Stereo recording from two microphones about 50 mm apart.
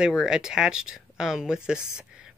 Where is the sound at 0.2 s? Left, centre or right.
Centre.